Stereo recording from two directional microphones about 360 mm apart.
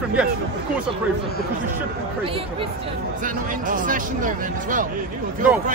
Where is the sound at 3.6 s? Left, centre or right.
Right.